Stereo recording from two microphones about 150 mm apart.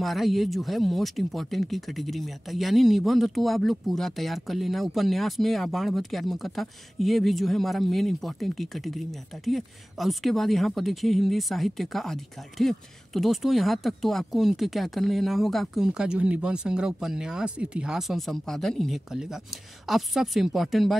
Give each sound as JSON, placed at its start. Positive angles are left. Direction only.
{"t": 0.0, "sound": "speech", "side_deg": 0}